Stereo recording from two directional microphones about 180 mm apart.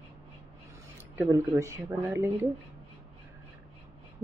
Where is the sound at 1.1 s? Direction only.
10° right (ahead or behind).